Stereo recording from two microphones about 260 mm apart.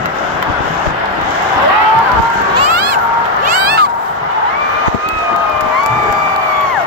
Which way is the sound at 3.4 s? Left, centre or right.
Right.